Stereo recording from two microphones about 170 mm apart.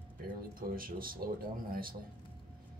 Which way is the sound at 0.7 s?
55° right (ahead or behind).